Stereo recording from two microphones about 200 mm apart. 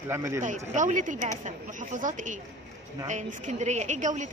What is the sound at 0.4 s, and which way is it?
A woman's voice, 40° right (ahead or behind).